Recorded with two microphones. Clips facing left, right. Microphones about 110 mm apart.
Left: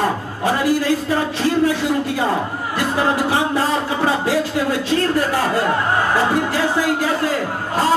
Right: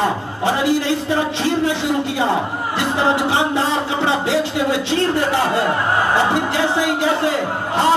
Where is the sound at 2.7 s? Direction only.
25° right (ahead or behind).